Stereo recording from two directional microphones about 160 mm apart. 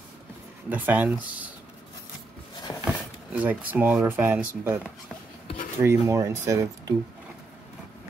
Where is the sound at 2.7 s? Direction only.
20° left (ahead or behind).